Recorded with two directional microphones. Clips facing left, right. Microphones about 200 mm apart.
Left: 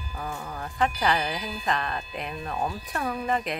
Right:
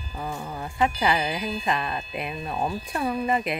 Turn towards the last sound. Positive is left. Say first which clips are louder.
# right 3 dB
turn(degrees=-5)  # may be behind; listen again after turning